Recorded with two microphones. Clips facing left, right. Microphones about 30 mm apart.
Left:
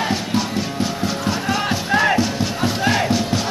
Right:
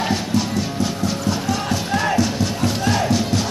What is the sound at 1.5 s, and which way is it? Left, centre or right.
Music, left.